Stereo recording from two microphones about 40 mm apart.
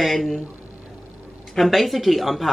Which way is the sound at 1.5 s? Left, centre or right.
Centre.